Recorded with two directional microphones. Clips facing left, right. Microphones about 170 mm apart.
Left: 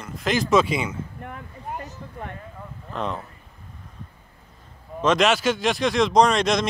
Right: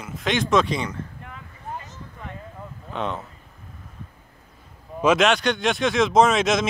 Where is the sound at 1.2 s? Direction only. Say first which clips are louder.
Left 4 dB; 50° left (ahead or behind).